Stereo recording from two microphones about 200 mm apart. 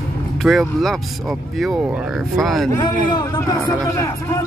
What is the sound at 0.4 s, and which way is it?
Speech, centre (ahead or behind).